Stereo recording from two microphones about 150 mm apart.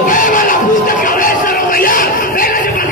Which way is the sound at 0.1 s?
60° left (ahead or behind).